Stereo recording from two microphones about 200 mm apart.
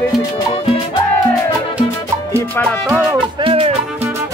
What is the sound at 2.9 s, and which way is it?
Music, 10° right (ahead or behind).